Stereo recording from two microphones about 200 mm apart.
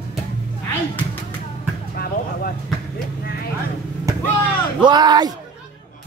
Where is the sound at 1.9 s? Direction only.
50° left (ahead or behind).